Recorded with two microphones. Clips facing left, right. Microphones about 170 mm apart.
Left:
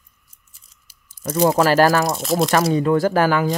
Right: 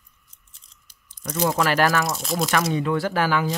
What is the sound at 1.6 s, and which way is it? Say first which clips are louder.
Speech: left 5 dB; 40° left (ahead or behind).